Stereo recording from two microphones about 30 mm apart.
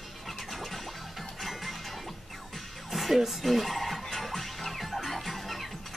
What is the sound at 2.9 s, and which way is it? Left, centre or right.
Music, centre.